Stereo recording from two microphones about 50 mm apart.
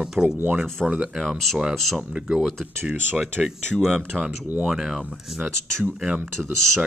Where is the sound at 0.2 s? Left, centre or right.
Right.